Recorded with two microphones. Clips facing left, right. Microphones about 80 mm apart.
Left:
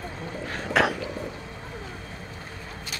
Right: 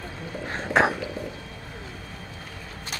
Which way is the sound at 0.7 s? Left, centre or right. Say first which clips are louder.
Right 2 dB; right.